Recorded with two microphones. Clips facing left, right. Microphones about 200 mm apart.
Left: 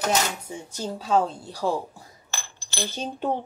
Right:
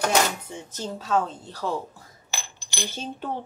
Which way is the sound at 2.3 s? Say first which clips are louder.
Even; 15° right (ahead or behind).